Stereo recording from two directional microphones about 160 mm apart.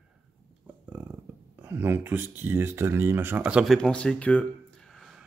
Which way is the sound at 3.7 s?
5° left (ahead or behind).